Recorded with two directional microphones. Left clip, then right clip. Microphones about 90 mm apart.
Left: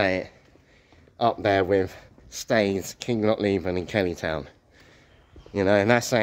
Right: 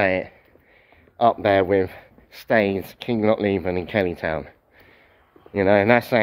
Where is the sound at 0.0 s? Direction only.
35° left (ahead or behind).